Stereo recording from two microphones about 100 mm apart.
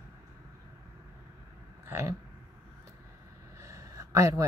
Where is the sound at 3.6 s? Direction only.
30° right (ahead or behind).